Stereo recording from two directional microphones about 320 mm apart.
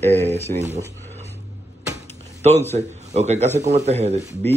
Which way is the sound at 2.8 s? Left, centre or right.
Right.